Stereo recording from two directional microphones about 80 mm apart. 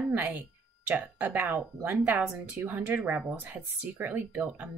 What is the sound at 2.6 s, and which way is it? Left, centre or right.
Speech, right.